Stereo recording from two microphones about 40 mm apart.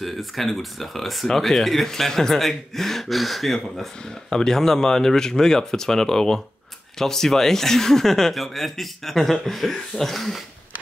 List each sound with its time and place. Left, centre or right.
0.0 s speech: centre
4.0 s speech: centre